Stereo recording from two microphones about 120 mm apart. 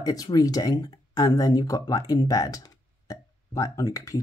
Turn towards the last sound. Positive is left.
turn(degrees=25)  # may be behind; listen again after turning